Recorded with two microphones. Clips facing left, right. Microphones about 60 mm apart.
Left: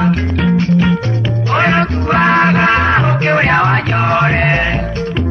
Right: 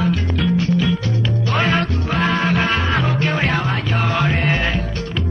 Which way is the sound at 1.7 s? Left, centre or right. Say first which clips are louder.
Left 7 dB; left.